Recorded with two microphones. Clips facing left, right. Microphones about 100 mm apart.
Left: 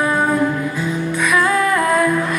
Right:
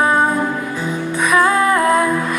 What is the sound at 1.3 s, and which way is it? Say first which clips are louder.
Music: right 3 dB; 25° right (ahead or behind).